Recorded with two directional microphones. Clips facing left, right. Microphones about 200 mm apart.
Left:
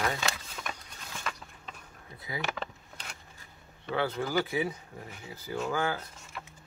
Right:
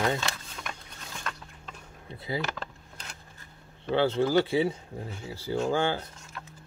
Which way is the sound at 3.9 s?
30° right (ahead or behind).